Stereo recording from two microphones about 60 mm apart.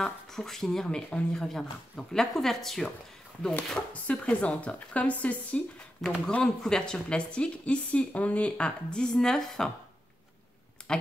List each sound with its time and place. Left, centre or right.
0.0 s speech: centre
3.9 s speech: left
5.9 s speech: centre
10.8 s computer keyboard: centre